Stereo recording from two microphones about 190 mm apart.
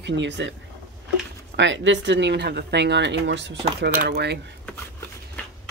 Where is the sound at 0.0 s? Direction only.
70° right (ahead or behind).